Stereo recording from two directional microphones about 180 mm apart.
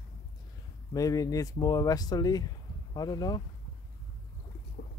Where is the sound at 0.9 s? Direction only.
20° left (ahead or behind).